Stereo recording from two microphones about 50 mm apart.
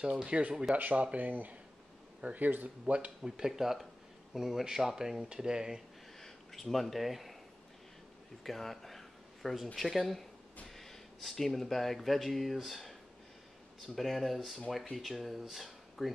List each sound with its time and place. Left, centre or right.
0.2 s speech: right
3.2 s speech: centre
6.2 s speech: centre
8.5 s a sound: centre
9.8 s speech: centre